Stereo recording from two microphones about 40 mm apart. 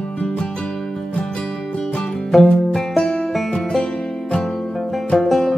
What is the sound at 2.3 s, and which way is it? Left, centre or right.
Music, centre.